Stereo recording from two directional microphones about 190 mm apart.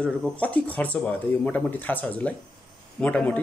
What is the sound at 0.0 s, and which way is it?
Speech, 5° left (ahead or behind).